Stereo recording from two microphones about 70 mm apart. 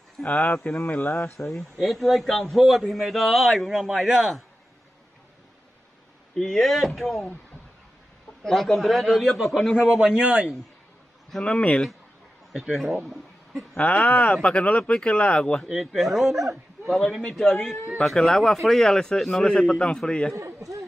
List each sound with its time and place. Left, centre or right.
0.2 s speech: left
1.5 s a man's voice: centre
6.3 s a man's voice: centre
8.5 s a man's voice: centre
9.8 s a man's voice: centre
11.2 s a man's voice: centre
12.5 s a man's voice: centre
13.7 s speech: left
15.7 s a man's voice: centre
20.3 s a man's voice: right